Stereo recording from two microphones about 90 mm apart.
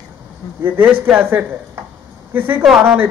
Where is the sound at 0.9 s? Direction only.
15° right (ahead or behind).